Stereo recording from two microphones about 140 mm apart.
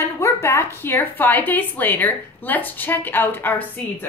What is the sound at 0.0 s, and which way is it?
A woman's voice, 20° left (ahead or behind).